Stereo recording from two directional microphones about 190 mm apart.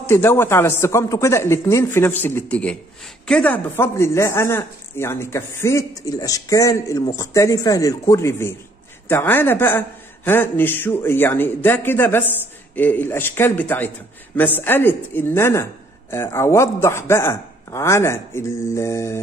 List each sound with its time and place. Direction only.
0.0 s speech: 10° left (ahead or behind)